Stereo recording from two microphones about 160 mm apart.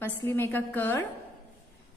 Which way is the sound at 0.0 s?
15° left (ahead or behind).